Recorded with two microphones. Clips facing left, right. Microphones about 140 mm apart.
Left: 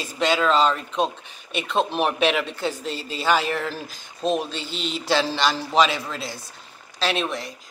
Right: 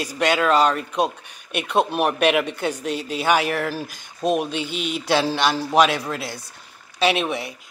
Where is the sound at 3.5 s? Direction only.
10° right (ahead or behind).